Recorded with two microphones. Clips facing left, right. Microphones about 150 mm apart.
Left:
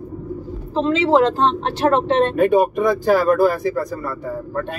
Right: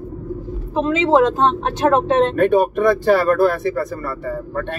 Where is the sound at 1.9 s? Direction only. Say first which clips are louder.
Right 1 dB; 15° right (ahead or behind).